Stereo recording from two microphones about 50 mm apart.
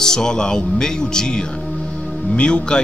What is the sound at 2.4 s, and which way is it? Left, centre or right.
Speech, centre.